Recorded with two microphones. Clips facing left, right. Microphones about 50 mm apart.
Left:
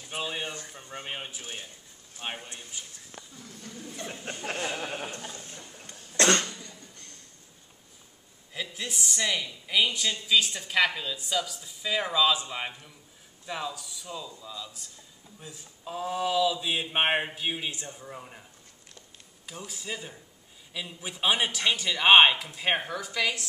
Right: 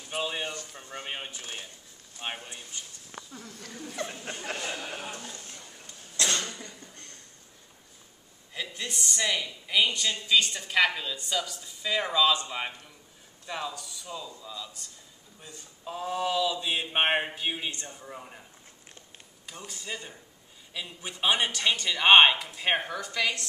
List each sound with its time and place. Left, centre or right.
0.1 s speech: centre
3.2 s speech: right
4.0 s speech: right
4.7 s speech: left
5.4 s a sound: centre
5.9 s cough: left
8.5 s speech: centre
19.4 s speech: centre